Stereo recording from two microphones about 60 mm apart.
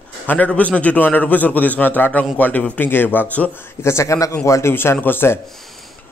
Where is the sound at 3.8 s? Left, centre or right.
Left.